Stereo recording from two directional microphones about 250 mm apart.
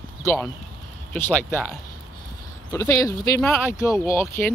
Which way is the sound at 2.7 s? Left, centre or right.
Centre.